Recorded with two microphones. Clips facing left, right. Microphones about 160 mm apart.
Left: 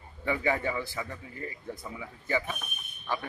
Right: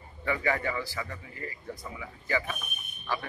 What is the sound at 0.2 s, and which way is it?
Speech, 15° left (ahead or behind).